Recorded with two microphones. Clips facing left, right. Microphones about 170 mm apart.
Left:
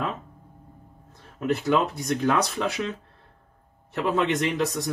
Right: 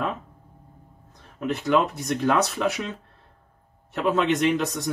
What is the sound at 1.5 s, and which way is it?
Speech, centre (ahead or behind).